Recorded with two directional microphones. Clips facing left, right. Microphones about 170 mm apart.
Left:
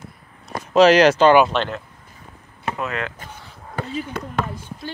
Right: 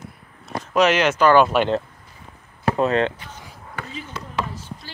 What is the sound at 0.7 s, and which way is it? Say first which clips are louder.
Speech: left 5 dB; 35° left (ahead or behind).